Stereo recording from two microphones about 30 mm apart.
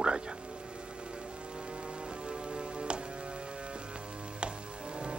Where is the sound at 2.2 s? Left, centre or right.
Right.